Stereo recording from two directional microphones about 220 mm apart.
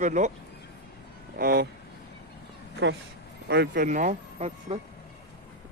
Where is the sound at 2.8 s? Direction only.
55° right (ahead or behind); by 4.8 s 30° right (ahead or behind).